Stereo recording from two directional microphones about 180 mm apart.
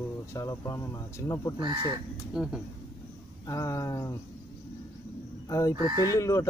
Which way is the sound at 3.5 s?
15° left (ahead or behind).